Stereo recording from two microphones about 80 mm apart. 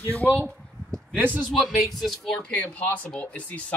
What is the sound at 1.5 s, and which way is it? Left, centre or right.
Speech, centre.